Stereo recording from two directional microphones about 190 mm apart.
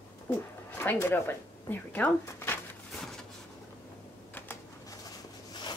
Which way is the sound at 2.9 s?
Centre (ahead or behind).